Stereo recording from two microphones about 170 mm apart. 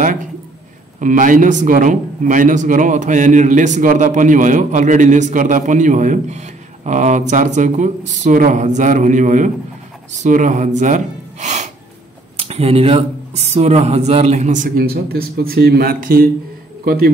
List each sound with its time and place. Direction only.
0.9 s a man's voice: 50° right (ahead or behind)